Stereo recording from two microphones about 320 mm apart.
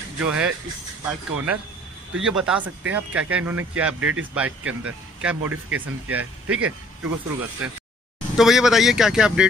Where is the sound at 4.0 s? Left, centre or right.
Right.